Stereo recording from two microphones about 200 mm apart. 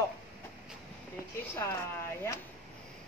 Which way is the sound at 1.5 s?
15° left (ahead or behind).